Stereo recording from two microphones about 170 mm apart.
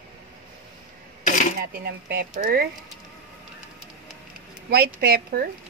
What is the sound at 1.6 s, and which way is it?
Speech, 65° right (ahead or behind).